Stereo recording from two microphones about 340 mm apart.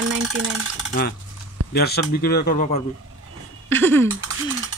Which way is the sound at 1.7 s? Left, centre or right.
Left.